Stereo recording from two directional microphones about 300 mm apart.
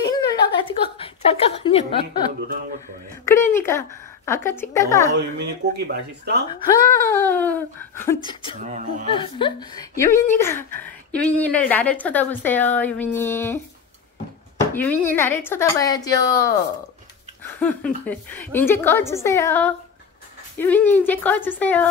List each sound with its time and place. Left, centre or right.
0.1 s a sound: centre
0.9 s speech: centre
3.3 s a woman's voice: centre
5.4 s speech: right
6.5 s a woman's voice: centre
14.7 s a woman's voice: centre
17.4 s a woman's voice: centre